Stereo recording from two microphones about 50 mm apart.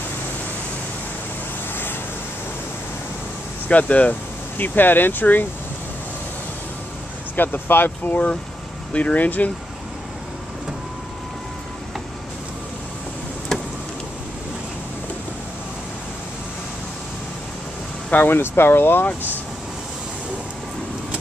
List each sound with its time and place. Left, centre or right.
3.6 s speech: left
7.3 s speech: left
13.5 s a sound: centre
18.1 s speech: left